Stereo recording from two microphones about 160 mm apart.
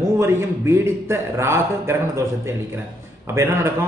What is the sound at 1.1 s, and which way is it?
Speech, 15° right (ahead or behind).